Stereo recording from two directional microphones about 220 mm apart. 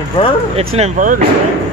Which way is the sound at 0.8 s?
35° right (ahead or behind).